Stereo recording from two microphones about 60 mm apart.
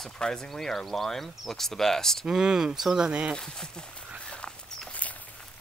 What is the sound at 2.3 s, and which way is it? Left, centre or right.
Speech, centre.